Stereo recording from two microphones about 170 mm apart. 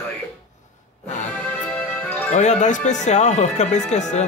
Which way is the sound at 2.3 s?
45° left (ahead or behind).